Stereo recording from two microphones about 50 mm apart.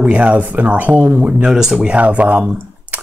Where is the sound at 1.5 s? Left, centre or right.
Centre.